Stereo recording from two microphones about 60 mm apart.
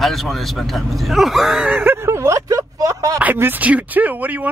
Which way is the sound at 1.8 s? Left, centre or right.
Right.